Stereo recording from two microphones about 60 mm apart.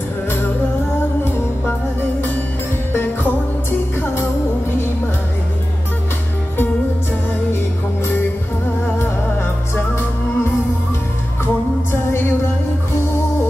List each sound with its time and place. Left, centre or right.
1.2 s music: left
2.9 s music: left
9.8 s music: left